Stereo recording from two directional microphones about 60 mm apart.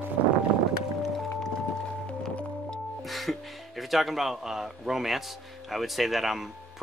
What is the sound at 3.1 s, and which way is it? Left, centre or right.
Music, centre.